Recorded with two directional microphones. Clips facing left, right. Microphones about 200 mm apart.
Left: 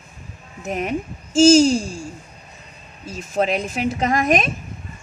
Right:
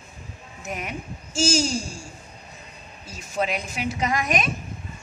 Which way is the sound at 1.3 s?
90° left.